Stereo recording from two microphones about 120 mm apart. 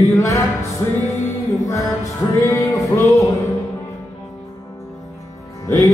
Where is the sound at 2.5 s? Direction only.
25° left (ahead or behind).